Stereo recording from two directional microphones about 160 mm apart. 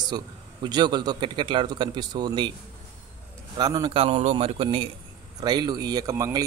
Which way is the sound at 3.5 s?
25° right (ahead or behind).